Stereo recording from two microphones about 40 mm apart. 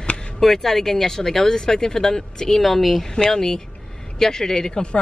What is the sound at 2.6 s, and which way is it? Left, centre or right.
Speech, centre.